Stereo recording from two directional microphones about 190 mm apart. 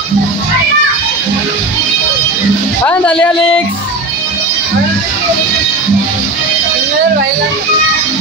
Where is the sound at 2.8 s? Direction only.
5° left (ahead or behind).